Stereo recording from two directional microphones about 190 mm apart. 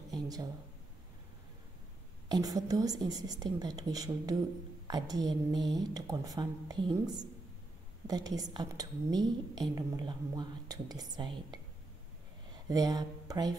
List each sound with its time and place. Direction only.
0.1 s a sound: 20° right (ahead or behind)
2.2 s a woman's voice: 20° right (ahead or behind)
8.1 s a woman's voice: 20° right (ahead or behind)
12.6 s a woman's voice: 20° right (ahead or behind)